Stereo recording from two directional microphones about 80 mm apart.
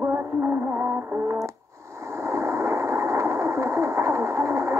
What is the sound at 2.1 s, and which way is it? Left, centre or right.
Vehicle, right.